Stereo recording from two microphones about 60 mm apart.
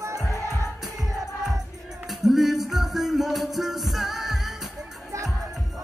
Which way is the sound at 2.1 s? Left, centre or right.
Centre.